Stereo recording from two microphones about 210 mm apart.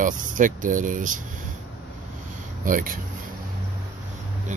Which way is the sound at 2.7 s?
40° right (ahead or behind).